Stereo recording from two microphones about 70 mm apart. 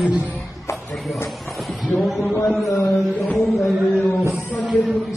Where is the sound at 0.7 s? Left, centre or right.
Left.